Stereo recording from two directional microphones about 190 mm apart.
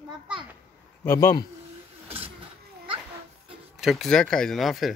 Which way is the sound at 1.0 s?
15° left (ahead or behind).